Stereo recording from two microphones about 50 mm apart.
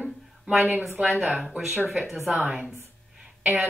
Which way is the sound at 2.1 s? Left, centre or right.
Centre.